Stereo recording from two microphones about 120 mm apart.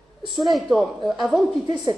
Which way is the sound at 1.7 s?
35° right (ahead or behind).